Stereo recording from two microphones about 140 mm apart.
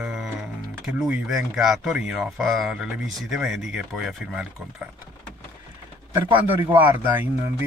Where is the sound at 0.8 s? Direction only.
5° right (ahead or behind).